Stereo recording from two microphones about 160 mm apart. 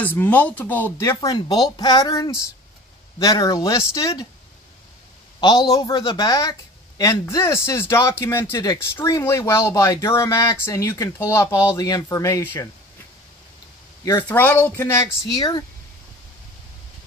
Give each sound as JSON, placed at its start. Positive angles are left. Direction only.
{"t": 0.0, "sound": "speech", "side_deg": 10}
{"t": 5.4, "sound": "speech", "side_deg": 25}
{"t": 14.0, "sound": "speech", "side_deg": 15}